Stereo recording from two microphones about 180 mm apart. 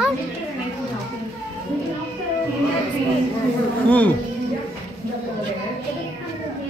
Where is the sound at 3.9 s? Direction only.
10° left (ahead or behind).